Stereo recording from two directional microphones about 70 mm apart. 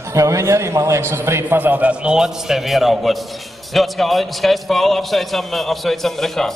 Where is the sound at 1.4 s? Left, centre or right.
Right.